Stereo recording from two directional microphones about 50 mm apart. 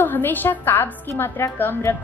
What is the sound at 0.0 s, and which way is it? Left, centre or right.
Speech, left.